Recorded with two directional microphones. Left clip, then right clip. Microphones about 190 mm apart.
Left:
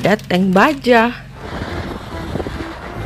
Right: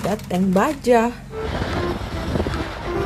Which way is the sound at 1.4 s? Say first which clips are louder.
Right 3 dB; centre (ahead or behind).